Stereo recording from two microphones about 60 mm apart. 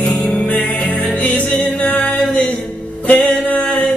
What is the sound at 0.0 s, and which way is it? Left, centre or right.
Music, left.